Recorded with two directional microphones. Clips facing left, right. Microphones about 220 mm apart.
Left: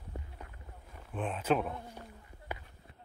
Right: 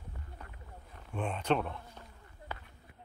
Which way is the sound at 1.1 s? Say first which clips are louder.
Left 1 dB; centre (ahead or behind).